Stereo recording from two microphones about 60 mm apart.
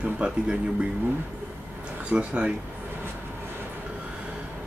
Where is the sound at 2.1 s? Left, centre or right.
Centre.